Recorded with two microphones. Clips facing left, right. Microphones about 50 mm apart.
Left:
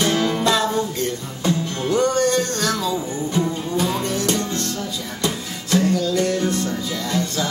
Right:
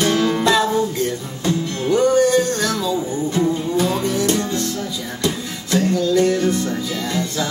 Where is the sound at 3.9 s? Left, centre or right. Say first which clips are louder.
Right 3 dB; centre.